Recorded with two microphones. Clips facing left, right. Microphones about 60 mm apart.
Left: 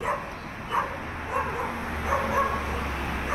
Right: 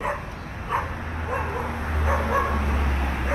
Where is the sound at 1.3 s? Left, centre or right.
Right.